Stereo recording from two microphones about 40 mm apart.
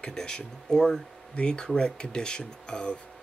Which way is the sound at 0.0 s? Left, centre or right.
Centre.